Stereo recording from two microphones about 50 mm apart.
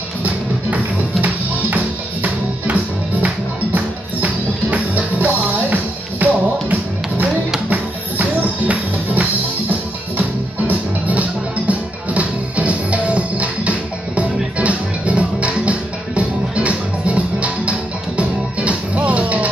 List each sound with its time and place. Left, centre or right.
2.2 s music: right